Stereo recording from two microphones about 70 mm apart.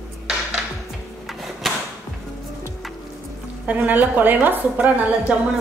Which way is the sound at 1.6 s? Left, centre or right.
Centre.